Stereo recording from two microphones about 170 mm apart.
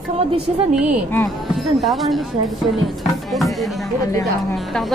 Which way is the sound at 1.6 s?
Centre (ahead or behind).